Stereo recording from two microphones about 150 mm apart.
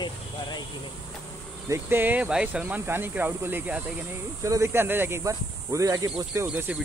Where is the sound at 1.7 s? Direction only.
15° right (ahead or behind).